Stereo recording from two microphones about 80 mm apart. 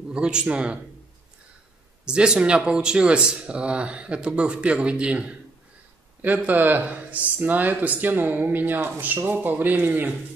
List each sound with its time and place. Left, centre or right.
0.1 s speech: centre
2.0 s speech: centre